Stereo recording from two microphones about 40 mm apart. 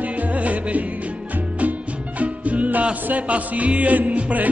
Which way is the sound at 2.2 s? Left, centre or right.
Right.